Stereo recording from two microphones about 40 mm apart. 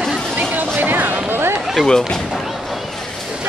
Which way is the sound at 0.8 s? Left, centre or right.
Right.